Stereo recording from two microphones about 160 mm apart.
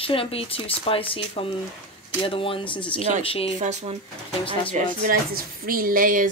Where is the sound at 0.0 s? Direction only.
35° left (ahead or behind).